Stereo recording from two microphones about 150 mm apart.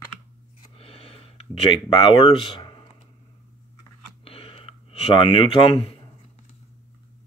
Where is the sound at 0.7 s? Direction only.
40° left (ahead or behind).